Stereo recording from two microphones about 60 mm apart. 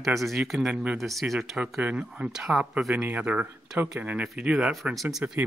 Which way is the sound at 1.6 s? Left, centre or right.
Centre.